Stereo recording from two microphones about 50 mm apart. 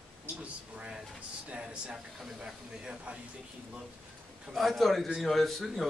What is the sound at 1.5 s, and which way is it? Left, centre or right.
Speech, right.